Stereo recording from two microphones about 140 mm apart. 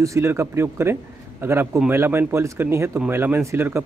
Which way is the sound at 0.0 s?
20° right (ahead or behind).